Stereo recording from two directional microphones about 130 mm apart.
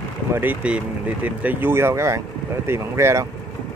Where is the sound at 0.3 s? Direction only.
15° right (ahead or behind).